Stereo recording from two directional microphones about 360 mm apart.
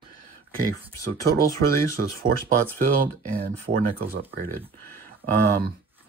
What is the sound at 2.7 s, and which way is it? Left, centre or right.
Speech, right.